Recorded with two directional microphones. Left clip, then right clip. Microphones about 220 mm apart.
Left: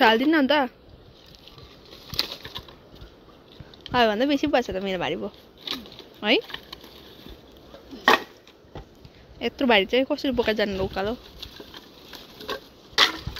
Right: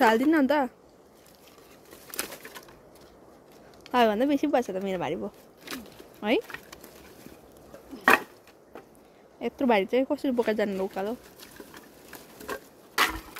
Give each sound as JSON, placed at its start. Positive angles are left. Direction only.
{"t": 0.0, "sound": "speech", "side_deg": -15}
{"t": 3.9, "sound": "speech", "side_deg": -20}
{"t": 9.4, "sound": "speech", "side_deg": -10}
{"t": 12.9, "sound": "a sound", "side_deg": -30}